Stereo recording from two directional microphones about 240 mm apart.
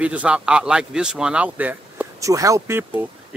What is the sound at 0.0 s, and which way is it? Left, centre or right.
Speech, centre.